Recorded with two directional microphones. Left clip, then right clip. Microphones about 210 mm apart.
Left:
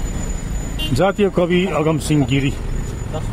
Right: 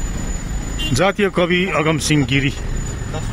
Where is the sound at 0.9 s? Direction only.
5° left (ahead or behind).